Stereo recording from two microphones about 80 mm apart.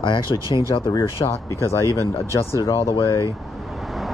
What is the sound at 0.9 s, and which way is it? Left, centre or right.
Speech, left.